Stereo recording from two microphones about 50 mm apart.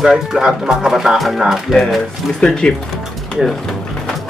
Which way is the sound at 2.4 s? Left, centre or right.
Centre.